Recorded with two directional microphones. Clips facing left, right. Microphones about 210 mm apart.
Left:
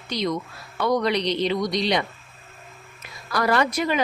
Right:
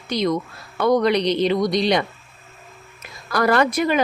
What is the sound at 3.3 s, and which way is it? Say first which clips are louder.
Speech: right 4 dB; 50° right (ahead or behind).